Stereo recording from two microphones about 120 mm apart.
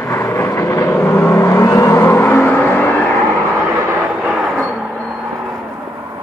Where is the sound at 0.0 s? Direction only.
20° left (ahead or behind).